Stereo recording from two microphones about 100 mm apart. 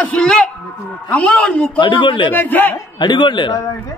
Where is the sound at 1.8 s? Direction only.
55° left (ahead or behind).